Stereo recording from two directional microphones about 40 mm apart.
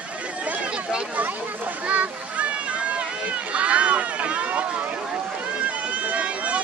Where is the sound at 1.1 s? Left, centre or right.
Right.